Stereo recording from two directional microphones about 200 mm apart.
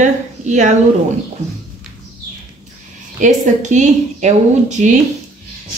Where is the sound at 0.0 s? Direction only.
35° right (ahead or behind).